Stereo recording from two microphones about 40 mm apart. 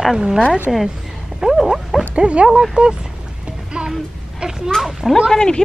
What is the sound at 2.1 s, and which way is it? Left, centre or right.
Speech, right.